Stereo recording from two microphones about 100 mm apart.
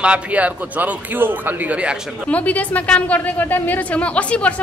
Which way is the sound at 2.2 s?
15° left (ahead or behind).